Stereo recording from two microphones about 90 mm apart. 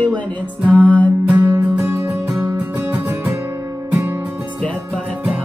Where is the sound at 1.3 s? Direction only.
20° right (ahead or behind).